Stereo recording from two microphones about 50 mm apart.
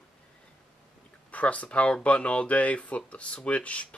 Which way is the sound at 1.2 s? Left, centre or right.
Left.